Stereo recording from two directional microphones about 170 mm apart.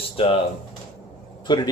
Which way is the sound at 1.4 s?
25° left (ahead or behind).